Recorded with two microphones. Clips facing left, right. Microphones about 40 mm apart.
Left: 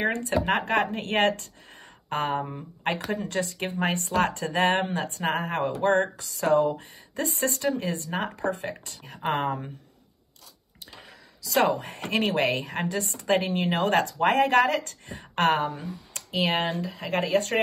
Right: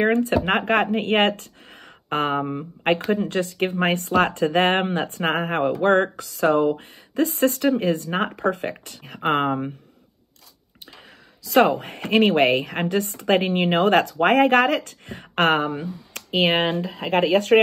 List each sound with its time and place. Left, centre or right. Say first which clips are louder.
0.0 s speech: right 6 dB; right
11.4 s speech: right 6 dB; right